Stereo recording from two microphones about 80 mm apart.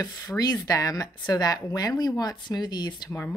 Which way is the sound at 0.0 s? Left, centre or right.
Left.